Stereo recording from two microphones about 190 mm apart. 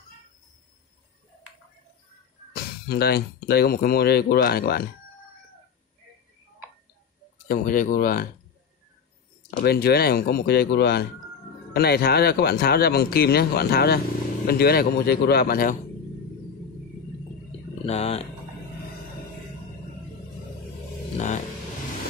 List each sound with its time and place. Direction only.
2.5 s speech: 55° left (ahead or behind)
7.4 s speech: 50° left (ahead or behind)
9.6 s speech: 55° left (ahead or behind)
17.5 s a sound: 35° left (ahead or behind)